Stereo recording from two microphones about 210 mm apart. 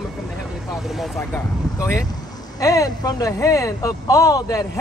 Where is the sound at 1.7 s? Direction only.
15° left (ahead or behind).